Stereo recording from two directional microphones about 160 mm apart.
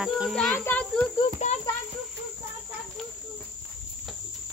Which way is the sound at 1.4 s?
50° left (ahead or behind).